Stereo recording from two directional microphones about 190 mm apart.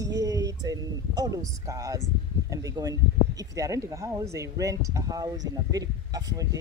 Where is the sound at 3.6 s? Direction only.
15° right (ahead or behind).